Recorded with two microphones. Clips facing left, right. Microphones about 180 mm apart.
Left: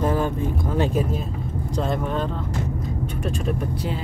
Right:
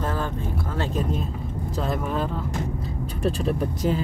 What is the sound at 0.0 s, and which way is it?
Vehicle, 15° left (ahead or behind).